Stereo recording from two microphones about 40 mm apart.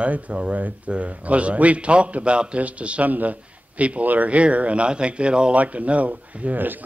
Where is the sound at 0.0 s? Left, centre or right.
Right.